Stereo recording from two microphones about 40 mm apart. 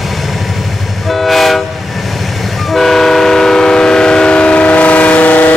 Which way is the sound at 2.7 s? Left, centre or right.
Centre.